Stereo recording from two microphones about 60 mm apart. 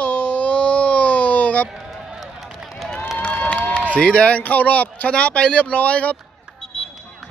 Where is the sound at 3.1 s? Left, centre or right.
Left.